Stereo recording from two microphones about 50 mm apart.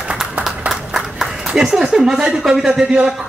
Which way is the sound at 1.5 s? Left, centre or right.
Centre.